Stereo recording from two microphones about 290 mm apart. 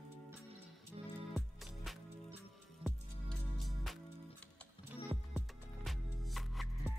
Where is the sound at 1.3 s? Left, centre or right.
Centre.